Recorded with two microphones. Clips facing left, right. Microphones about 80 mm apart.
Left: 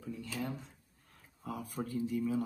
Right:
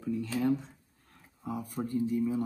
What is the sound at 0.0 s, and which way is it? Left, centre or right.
Speech, right.